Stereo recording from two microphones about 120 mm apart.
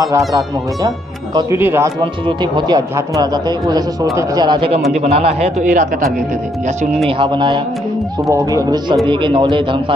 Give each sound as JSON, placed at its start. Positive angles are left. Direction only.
{"t": 1.6, "sound": "speech", "side_deg": -20}
{"t": 2.2, "sound": "a man's voice", "side_deg": -40}
{"t": 7.2, "sound": "speech", "side_deg": -40}
{"t": 8.3, "sound": "speech", "side_deg": -25}
{"t": 9.0, "sound": "a man's voice", "side_deg": -40}